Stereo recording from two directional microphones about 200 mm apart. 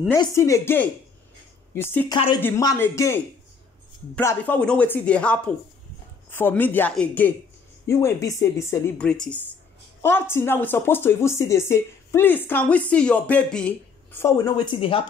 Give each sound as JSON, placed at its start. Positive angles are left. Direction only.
{"t": 0.1, "sound": "speech", "side_deg": 15}
{"t": 2.1, "sound": "speech", "side_deg": 25}
{"t": 2.4, "sound": "speech", "side_deg": 15}